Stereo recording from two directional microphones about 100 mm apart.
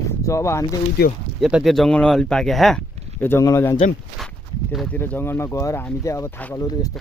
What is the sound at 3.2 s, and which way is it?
Speech, 20° left (ahead or behind).